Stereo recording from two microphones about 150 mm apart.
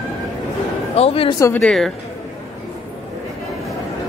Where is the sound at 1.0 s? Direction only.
40° left (ahead or behind).